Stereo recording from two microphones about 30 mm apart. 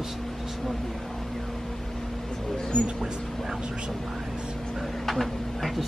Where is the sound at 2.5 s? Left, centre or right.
Left.